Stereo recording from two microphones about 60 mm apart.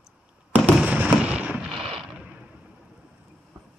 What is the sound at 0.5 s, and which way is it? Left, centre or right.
Fireworks, right.